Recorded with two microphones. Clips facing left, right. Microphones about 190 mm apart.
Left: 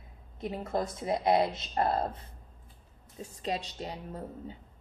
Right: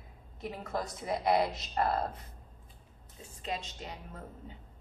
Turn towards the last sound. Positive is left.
turn(degrees=35)  # may be behind; listen again after turning